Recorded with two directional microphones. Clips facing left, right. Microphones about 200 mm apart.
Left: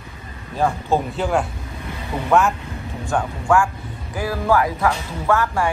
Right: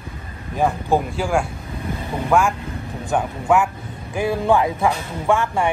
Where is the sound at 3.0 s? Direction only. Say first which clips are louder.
Right 1 dB; 20° right (ahead or behind).